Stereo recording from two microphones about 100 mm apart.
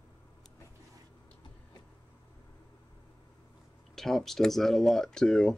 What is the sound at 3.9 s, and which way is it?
Speech, 5° left (ahead or behind).